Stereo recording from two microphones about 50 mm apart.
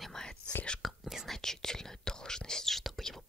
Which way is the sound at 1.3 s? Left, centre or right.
Centre.